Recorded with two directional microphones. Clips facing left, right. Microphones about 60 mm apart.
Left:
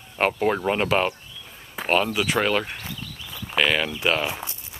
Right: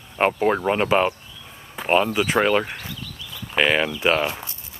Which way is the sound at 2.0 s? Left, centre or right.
Right.